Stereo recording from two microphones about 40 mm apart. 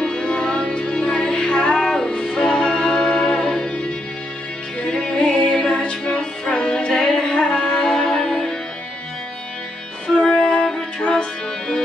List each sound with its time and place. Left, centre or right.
0.0 s music: centre
4.8 s music: centre
10.0 s music: left
11.0 s music: left